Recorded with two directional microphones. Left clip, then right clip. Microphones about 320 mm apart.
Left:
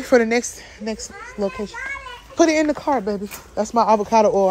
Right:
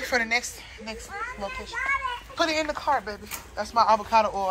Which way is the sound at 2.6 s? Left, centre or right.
Left.